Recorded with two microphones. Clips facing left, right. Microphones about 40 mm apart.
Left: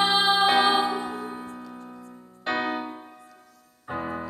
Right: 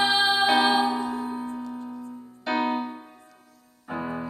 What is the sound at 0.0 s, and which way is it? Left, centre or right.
Music, left.